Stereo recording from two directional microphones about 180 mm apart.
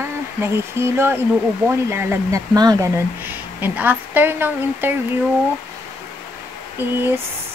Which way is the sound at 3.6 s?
10° right (ahead or behind).